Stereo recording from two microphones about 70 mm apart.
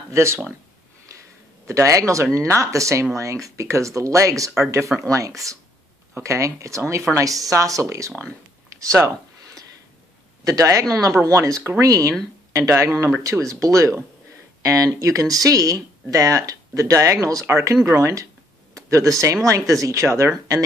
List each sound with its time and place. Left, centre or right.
0.1 s speech: right
1.7 s speech: right
4.9 s speech: centre
5.4 s speech: right
8.2 s a sound: right
10.4 s speech: right